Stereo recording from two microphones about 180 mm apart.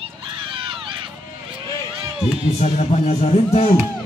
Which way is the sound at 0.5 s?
30° right (ahead or behind).